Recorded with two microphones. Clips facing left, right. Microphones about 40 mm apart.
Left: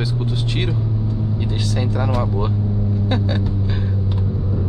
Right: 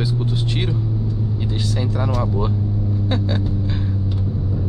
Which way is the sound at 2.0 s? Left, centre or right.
Centre.